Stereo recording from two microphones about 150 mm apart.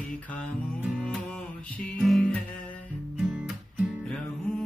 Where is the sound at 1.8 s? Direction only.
5° left (ahead or behind).